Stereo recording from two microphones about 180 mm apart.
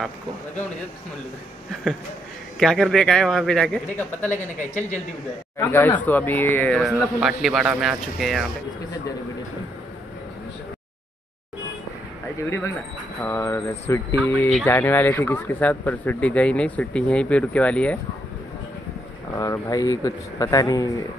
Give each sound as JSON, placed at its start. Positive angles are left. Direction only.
{"t": 2.6, "sound": "a man's voice", "side_deg": 0}
{"t": 5.6, "sound": "speech", "side_deg": 10}
{"t": 6.8, "sound": "a man's voice", "side_deg": 0}
{"t": 12.4, "sound": "speech", "side_deg": 15}
{"t": 19.3, "sound": "speech", "side_deg": 20}